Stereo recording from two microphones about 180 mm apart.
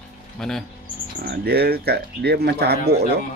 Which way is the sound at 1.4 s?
60° right (ahead or behind).